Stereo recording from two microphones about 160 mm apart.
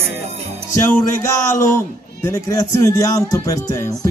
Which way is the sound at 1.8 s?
20° left (ahead or behind).